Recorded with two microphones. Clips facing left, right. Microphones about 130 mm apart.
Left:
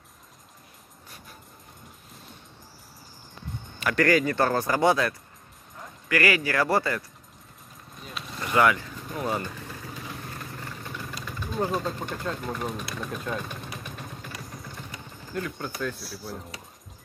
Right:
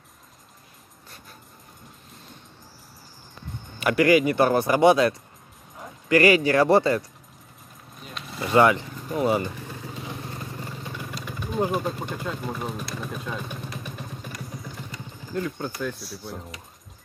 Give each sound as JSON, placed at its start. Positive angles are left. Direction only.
{"t": 3.8, "sound": "speech", "side_deg": -15}
{"t": 8.0, "sound": "a sound", "side_deg": -5}
{"t": 8.5, "sound": "speech", "side_deg": -25}
{"t": 9.9, "sound": "vehicle", "side_deg": -20}
{"t": 11.2, "sound": "speech", "side_deg": -15}
{"t": 15.3, "sound": "speech", "side_deg": -20}
{"t": 16.0, "sound": "speech", "side_deg": 0}